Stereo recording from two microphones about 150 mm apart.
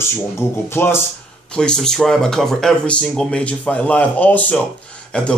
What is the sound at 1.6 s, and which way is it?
Speech, 5° left (ahead or behind).